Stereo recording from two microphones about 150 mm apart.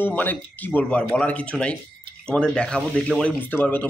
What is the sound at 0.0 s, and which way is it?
Speech, 10° left (ahead or behind).